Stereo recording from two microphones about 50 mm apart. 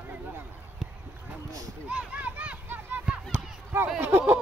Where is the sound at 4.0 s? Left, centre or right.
Right.